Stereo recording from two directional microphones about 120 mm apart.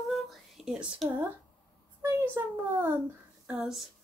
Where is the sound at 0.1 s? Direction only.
Centre (ahead or behind).